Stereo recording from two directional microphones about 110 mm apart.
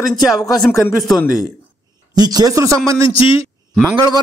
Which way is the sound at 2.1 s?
35° right (ahead or behind).